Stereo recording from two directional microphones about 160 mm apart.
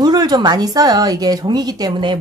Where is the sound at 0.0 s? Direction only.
25° right (ahead or behind).